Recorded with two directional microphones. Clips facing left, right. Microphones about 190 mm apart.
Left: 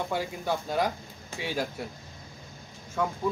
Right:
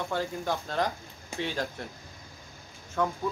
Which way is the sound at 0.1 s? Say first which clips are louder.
Left 1 dB; 10° left (ahead or behind).